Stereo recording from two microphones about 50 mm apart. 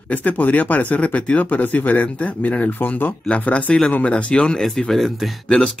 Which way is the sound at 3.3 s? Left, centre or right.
Left.